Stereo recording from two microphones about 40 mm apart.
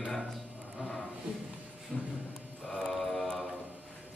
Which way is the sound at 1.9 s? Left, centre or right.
Left.